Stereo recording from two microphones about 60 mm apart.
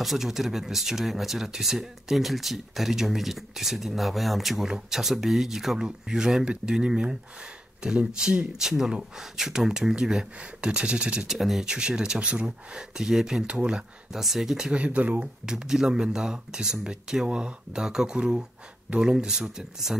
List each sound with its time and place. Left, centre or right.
0.0 s speech: centre
8.2 s speech: centre
11.3 s speech: centre
11.6 s speech: centre
14.7 s speech: right
15.4 s speech: centre